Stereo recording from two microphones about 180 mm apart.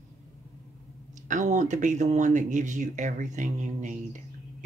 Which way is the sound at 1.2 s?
45° right (ahead or behind).